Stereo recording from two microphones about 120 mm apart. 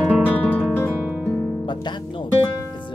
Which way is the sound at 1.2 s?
20° left (ahead or behind).